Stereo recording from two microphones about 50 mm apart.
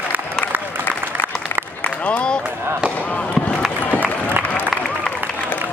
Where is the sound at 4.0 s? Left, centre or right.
Right.